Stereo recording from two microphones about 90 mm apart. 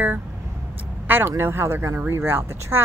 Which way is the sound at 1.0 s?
20° right (ahead or behind).